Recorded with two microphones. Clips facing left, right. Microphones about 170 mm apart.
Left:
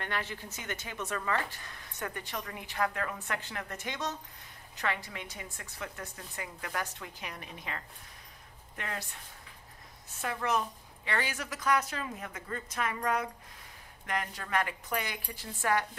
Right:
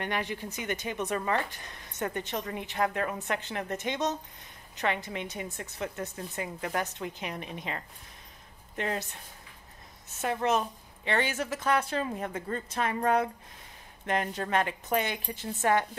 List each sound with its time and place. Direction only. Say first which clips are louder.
0.0 s a woman's voice: right 5 dB; 15° right (ahead or behind)
10.0 s a woman's voice: right 5 dB; 25° right (ahead or behind)